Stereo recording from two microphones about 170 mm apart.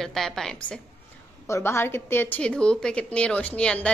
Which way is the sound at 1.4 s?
15° left (ahead or behind).